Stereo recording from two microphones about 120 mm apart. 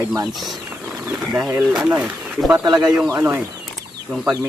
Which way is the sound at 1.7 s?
5° right (ahead or behind).